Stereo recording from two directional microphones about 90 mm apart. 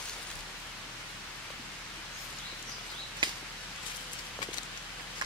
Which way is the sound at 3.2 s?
60° right (ahead or behind).